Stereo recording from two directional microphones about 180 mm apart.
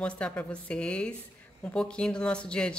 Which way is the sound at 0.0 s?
5° left (ahead or behind).